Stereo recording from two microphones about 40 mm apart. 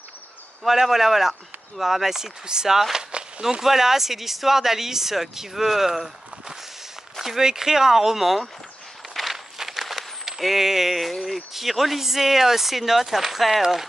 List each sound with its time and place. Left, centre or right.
0.7 s a man's voice: centre
3.1 s a sound: right
3.6 s speech: centre